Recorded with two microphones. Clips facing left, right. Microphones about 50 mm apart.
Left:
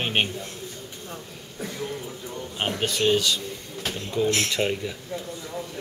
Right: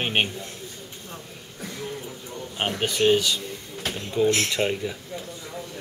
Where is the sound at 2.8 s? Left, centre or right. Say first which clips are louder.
Right 2 dB; centre.